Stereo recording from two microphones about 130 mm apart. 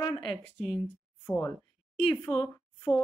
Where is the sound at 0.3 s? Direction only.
Centre (ahead or behind).